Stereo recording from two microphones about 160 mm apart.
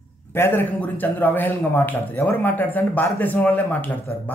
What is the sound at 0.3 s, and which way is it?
Speech, 10° left (ahead or behind).